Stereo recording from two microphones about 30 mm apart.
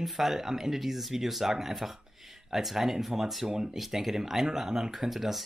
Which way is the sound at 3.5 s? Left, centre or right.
Right.